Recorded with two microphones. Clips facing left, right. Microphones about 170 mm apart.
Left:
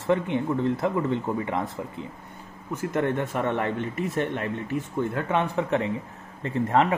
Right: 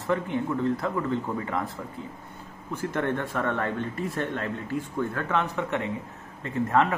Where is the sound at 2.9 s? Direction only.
15° left (ahead or behind).